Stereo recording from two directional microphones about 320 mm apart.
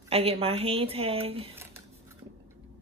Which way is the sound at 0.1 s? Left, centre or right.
Centre.